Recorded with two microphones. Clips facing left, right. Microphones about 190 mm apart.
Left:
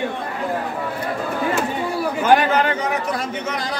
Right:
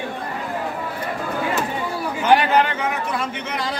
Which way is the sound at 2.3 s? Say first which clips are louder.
Even; 40° left (ahead or behind).